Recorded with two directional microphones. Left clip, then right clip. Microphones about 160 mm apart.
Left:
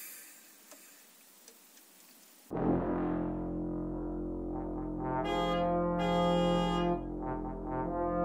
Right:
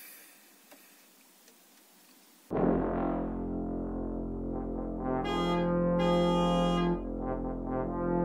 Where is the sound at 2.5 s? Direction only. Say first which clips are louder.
Right 6 dB; 70° right (ahead or behind).